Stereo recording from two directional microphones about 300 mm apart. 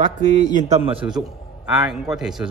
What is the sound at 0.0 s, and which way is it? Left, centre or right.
A man's voice, right.